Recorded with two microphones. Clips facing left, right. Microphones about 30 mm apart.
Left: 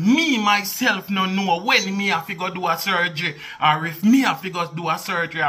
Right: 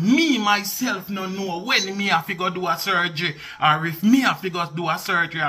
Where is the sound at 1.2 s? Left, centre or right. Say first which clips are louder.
Left 7 dB; left.